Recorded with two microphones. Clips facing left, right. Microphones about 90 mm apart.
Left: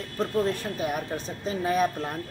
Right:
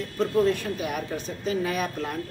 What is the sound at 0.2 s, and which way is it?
Speech, 35° left (ahead or behind).